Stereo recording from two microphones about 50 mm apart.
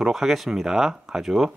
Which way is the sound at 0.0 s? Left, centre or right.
Centre.